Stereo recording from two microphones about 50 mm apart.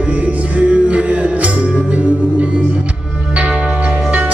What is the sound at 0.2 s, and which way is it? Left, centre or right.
Music, right.